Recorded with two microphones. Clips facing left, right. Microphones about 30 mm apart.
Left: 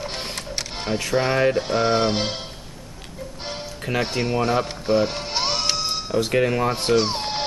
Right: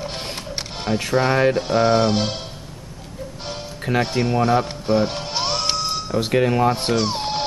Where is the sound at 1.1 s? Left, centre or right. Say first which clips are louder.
Right 2 dB; centre.